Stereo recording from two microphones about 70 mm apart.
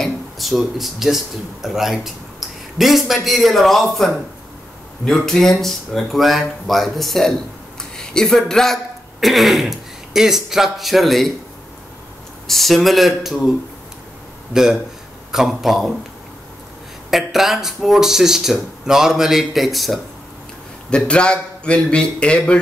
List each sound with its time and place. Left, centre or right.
0.0 s speech: centre
2.4 s a sound: centre
2.8 s speech: centre
12.4 s speech: centre
14.5 s speech: centre
17.1 s speech: centre
20.9 s a man's voice: centre